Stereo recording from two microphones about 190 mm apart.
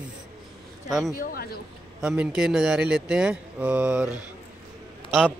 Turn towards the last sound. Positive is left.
turn(degrees=0)  # may be behind; listen again after turning